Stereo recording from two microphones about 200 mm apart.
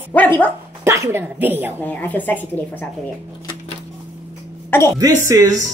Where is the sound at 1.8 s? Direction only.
10° left (ahead or behind).